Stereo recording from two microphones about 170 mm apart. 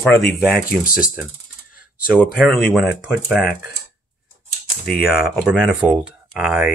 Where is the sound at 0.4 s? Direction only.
5° right (ahead or behind).